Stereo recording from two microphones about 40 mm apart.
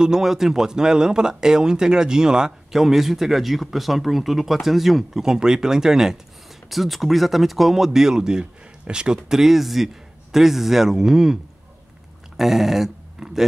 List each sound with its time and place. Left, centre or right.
0.0 s a man's voice: centre
6.7 s a man's voice: centre
12.4 s speech: centre